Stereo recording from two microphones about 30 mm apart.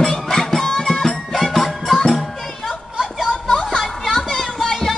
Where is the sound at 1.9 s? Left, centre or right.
Centre.